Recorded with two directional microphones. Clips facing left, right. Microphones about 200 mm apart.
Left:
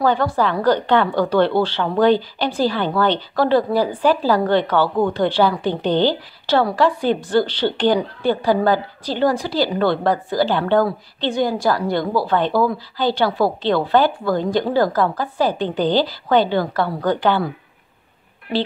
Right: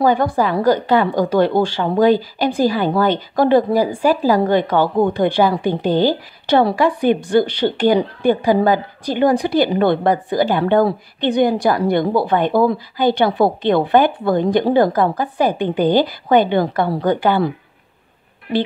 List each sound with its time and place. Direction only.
0.0 s a woman's voice: 10° right (ahead or behind)